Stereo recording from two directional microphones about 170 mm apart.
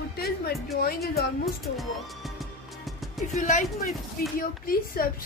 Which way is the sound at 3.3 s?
40° left (ahead or behind).